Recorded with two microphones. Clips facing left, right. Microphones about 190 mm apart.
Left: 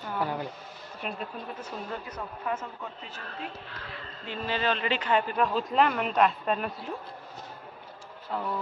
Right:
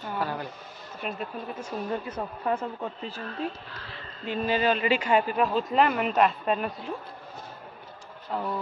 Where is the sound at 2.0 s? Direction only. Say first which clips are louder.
Right 4 dB; 30° right (ahead or behind).